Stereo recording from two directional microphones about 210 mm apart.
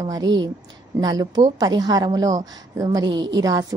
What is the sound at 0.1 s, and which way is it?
A woman's voice, 15° right (ahead or behind).